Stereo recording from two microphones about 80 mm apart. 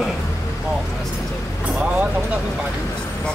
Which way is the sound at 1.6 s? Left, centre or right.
Centre.